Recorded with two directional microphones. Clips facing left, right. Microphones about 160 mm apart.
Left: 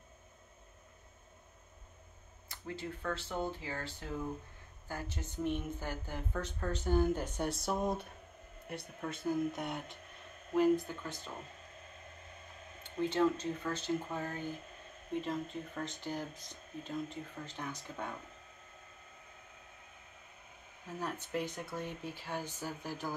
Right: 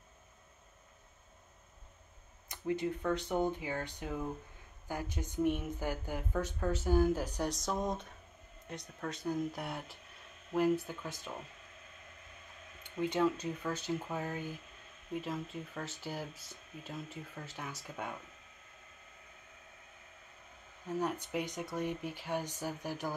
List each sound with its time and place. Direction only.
2.4 s speech: 20° right (ahead or behind)
13.0 s speech: 10° right (ahead or behind)
21.0 s speech: 15° right (ahead or behind)